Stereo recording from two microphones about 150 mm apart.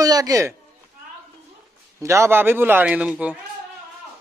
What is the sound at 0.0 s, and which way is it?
Speech, 25° right (ahead or behind).